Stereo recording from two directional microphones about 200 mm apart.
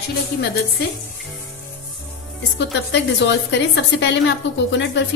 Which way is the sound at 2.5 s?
65° left (ahead or behind).